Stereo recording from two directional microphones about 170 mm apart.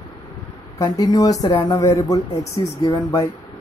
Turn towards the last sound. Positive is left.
turn(degrees=20)  # may be behind; listen again after turning